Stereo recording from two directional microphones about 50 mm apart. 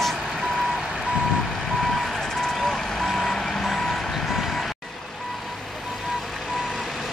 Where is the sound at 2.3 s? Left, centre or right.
Centre.